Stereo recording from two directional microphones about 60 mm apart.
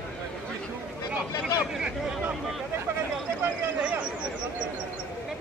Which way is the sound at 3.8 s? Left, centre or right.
Right.